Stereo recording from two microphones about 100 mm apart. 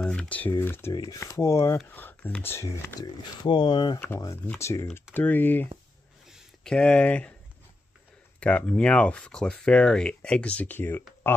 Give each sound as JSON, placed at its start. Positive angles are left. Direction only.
{"t": 0.0, "sound": "speech", "side_deg": 10}
{"t": 0.9, "sound": "speech", "side_deg": 35}
{"t": 1.9, "sound": "speech", "side_deg": 20}
{"t": 3.4, "sound": "speech", "side_deg": 50}
{"t": 4.6, "sound": "speech", "side_deg": 30}
{"t": 6.2, "sound": "a sound", "side_deg": 5}
{"t": 8.4, "sound": "speech", "side_deg": 10}